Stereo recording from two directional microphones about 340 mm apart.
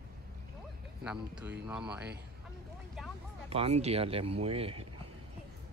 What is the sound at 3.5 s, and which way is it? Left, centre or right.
Speech, centre.